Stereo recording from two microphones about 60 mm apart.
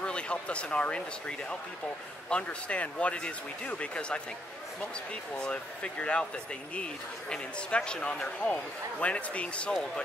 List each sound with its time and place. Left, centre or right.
0.0 s speech: centre
5.4 s speech: centre